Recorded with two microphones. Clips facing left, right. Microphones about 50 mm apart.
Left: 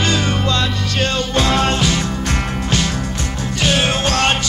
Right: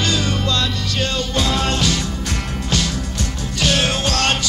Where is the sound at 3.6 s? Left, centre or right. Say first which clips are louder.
Left 2 dB; left.